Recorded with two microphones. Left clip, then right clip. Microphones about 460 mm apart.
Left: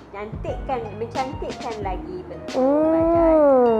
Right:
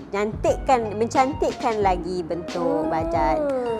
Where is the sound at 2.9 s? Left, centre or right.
Right.